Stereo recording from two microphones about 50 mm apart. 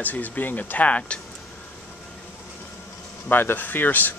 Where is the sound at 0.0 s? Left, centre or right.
Left.